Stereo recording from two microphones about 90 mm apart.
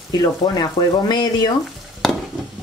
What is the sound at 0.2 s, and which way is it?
Speech, 55° left (ahead or behind).